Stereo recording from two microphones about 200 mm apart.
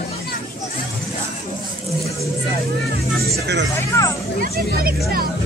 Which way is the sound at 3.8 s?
15° left (ahead or behind).